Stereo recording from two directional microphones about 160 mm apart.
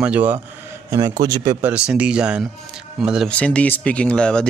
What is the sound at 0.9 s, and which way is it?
Speech, 20° right (ahead or behind).